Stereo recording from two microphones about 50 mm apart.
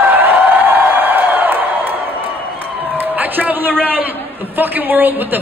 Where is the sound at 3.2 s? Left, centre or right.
Right.